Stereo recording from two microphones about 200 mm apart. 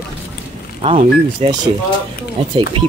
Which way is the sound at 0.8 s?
30° right (ahead or behind).